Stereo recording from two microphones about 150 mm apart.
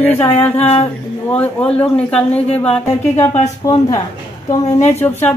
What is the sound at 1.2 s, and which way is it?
Speech, 5° left (ahead or behind).